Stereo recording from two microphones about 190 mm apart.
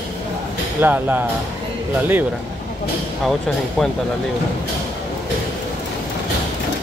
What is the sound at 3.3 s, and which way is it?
Speech, centre (ahead or behind).